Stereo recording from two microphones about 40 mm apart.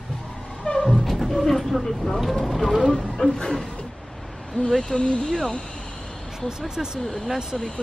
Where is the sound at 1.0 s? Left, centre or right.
Centre.